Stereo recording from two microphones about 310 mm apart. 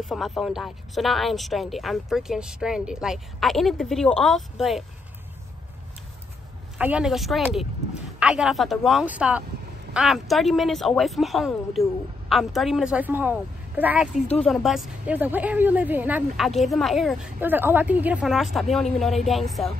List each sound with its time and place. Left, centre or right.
0.0 s speech: centre
6.8 s speech: centre